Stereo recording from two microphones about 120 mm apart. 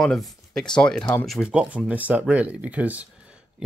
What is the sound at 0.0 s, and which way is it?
Speech, 5° left (ahead or behind).